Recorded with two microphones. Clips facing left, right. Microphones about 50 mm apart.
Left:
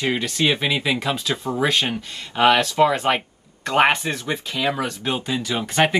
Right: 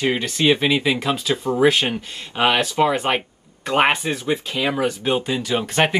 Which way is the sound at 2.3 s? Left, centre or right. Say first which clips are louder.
Left 2 dB; centre.